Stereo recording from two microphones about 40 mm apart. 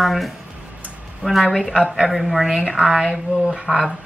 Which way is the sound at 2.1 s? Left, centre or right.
Centre.